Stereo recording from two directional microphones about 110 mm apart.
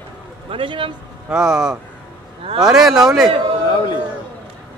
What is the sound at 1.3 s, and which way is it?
Speech, 5° right (ahead or behind).